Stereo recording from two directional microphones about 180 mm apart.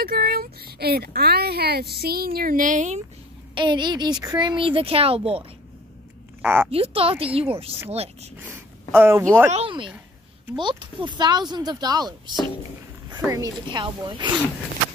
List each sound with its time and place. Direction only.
0.0 s speech: 55° right (ahead or behind)
3.5 s speech: 25° right (ahead or behind)
6.4 s a woman's voice: 10° right (ahead or behind)
6.7 s a woman's voice: 30° right (ahead or behind)
8.4 s speech: 10° right (ahead or behind)
9.5 s speech: 30° right (ahead or behind)